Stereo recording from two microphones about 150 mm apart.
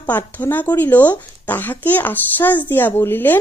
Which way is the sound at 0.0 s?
10° left (ahead or behind).